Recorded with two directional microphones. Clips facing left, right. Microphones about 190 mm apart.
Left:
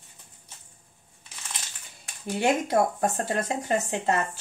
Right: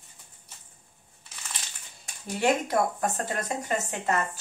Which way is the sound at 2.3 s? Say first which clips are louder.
Left 2 dB; 25° left (ahead or behind).